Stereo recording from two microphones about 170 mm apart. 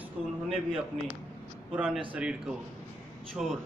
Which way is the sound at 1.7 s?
5° right (ahead or behind).